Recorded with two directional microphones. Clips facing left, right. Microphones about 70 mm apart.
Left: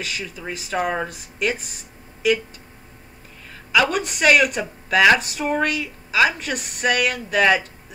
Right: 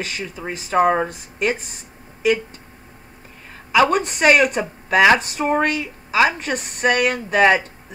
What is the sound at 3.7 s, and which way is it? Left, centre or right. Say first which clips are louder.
Speech: right 3 dB; right.